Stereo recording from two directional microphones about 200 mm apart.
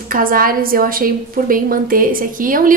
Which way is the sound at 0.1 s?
45° right (ahead or behind).